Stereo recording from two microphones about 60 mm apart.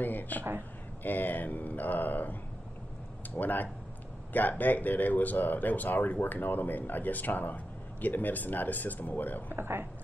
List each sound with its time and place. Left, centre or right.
0.0 s speech: left
3.3 s speech: left
9.5 s speech: right